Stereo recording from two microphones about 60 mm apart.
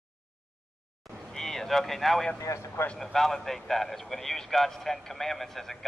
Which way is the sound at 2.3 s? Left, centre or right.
Left.